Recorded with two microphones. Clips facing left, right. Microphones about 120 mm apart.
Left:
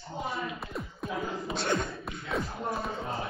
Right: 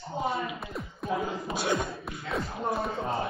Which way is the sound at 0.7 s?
Centre (ahead or behind).